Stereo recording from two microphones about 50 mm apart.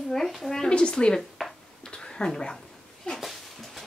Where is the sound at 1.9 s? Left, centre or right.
Centre.